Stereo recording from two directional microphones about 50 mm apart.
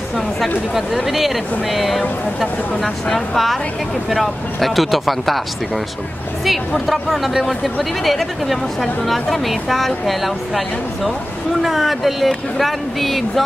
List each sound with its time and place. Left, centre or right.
0.7 s speech: centre
6.9 s speech: centre
11.6 s speech: centre